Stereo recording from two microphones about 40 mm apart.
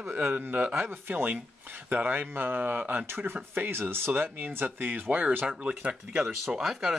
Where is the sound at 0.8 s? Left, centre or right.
Right.